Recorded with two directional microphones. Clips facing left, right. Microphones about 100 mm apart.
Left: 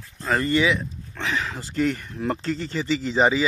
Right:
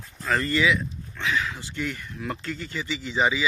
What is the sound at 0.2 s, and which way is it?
Speech, 25° left (ahead or behind).